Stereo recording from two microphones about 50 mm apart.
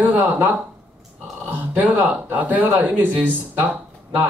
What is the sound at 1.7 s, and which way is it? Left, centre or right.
Speech, right.